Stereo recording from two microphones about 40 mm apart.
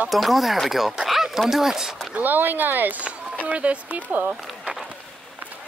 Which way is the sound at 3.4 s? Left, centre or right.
Right.